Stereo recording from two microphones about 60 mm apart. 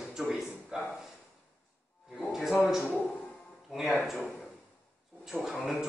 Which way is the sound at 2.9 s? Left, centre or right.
Left.